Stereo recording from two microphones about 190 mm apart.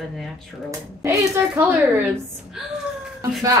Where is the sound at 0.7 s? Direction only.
15° right (ahead or behind).